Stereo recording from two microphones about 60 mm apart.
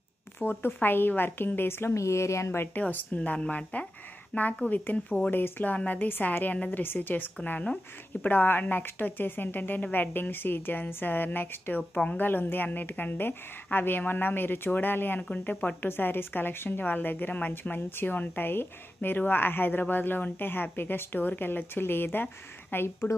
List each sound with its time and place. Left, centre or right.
0.4 s speech: left
2.0 s speech: left
2.8 s speech: left
11.9 s speech: centre
12.2 s speech: left